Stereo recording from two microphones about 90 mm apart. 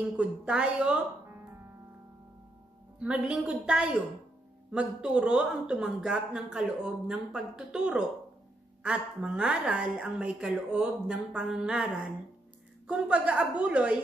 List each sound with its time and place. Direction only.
0.2 s speech: 10° right (ahead or behind)
3.0 s speech: 10° right (ahead or behind)